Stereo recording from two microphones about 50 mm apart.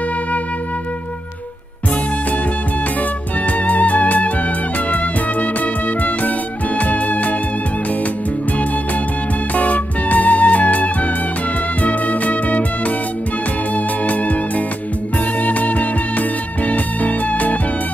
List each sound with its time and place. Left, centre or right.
3.4 s music: left
6.8 s music: left
9.6 s music: left
15.4 s music: left